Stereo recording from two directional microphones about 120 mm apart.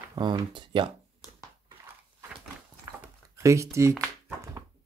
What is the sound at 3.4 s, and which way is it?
Speech, 25° right (ahead or behind).